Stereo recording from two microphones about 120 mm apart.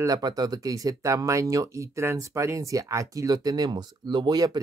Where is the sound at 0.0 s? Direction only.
30° right (ahead or behind).